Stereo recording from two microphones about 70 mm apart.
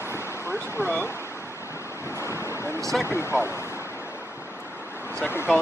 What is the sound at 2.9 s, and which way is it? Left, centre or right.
Speech, centre.